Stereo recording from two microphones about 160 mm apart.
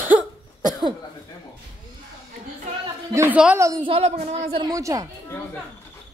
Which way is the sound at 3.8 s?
40° right (ahead or behind).